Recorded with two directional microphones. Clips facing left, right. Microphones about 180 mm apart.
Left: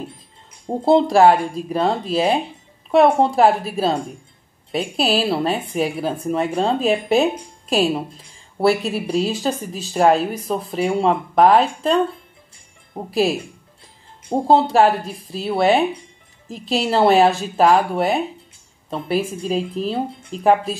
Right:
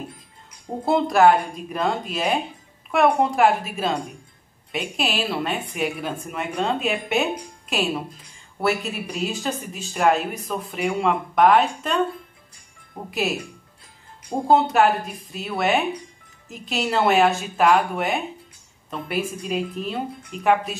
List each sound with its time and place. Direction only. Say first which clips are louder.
0.8 s speech: left 4 dB; 30° left (ahead or behind)
14.5 s speech: left 3 dB; 30° left (ahead or behind)